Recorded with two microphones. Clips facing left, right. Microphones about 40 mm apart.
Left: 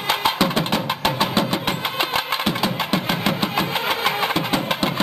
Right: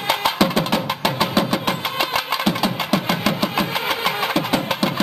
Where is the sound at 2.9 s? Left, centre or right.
Left.